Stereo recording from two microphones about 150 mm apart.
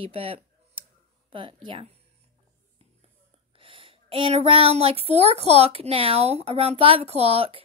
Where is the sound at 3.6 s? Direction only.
35° right (ahead or behind).